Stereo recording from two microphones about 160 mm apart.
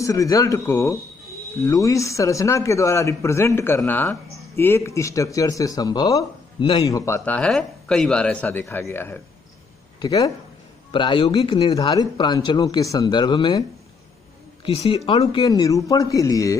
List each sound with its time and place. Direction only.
0.0 s speech: 20° left (ahead or behind)
6.6 s speech: 35° left (ahead or behind)
6.9 s speech: 20° left (ahead or behind); by 11.9 s 35° left (ahead or behind)
11.9 s speech: 25° left (ahead or behind)
14.6 s a woman's voice: 40° left (ahead or behind); by 16.5 s 20° left (ahead or behind)